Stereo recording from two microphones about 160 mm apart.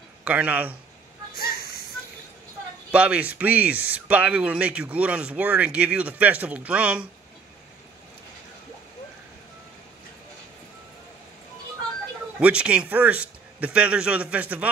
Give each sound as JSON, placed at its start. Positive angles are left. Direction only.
{"t": 0.2, "sound": "a man's voice", "side_deg": -10}
{"t": 1.3, "sound": "a sound", "side_deg": 75}
{"t": 2.9, "sound": "speech", "side_deg": -5}
{"t": 12.4, "sound": "speech", "side_deg": -5}